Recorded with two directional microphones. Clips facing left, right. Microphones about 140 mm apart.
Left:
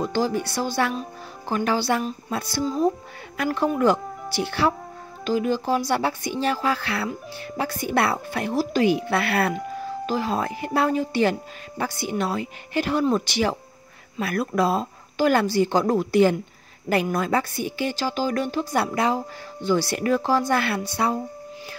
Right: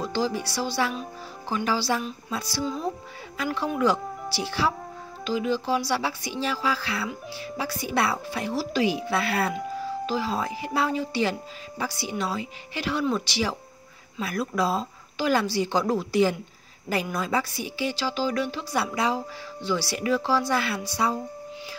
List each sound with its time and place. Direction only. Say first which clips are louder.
0.1 s speech: left 3 dB; 50° left (ahead or behind)
2.6 s speech: left 8 dB; 40° left (ahead or behind); by 9.5 s 65° left (ahead or behind)
10.0 s speech: left 4 dB; 50° left (ahead or behind)